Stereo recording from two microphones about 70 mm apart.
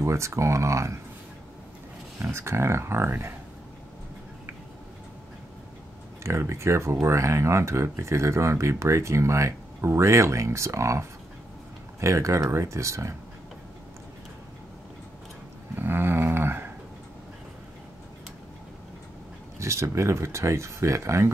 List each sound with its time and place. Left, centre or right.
0.0 s speech: right
2.3 s speech: right
6.2 s speech: right
15.7 s a sound: right
19.6 s speech: right